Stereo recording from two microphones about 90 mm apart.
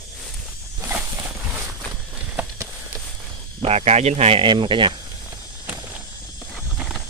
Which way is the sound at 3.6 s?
90° right.